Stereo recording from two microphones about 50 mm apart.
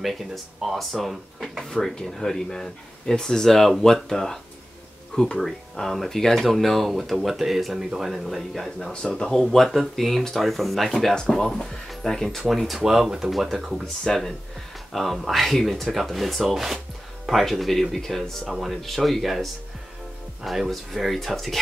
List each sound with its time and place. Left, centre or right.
0.0 s speech: centre
11.1 s speech: centre
14.0 s speech: centre